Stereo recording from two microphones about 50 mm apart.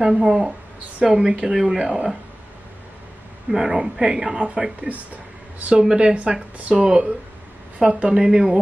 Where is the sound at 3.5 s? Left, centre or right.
Centre.